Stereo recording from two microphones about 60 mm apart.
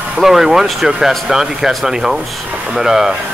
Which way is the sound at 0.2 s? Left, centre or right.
Centre.